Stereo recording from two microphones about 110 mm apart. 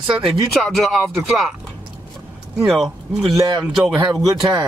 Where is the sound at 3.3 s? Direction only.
35° right (ahead or behind).